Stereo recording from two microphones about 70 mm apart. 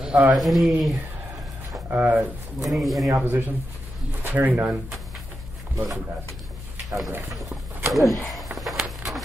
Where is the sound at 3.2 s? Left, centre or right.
Right.